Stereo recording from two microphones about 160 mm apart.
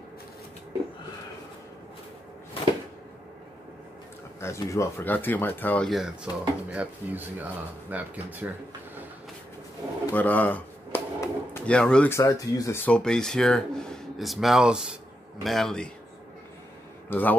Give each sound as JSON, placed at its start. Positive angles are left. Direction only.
{"t": 4.4, "sound": "speech", "side_deg": 15}
{"t": 5.9, "sound": "speech", "side_deg": 0}
{"t": 10.1, "sound": "a man's voice", "side_deg": 10}
{"t": 17.1, "sound": "speech", "side_deg": 10}